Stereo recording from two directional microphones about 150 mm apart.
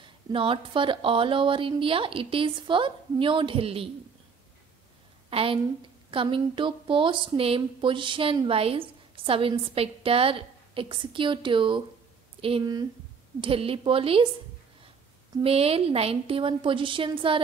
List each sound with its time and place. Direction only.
0.0 s speech: 35° right (ahead or behind)
5.3 s speech: 40° right (ahead or behind)
15.4 s speech: 40° right (ahead or behind)